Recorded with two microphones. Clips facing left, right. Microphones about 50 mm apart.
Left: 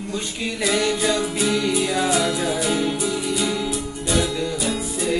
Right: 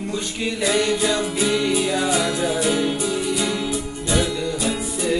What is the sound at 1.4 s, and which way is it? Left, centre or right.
Music, centre.